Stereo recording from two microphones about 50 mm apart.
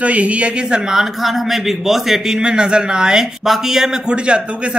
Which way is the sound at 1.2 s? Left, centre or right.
Centre.